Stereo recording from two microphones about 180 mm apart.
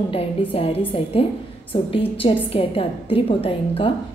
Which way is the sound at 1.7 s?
30° left (ahead or behind).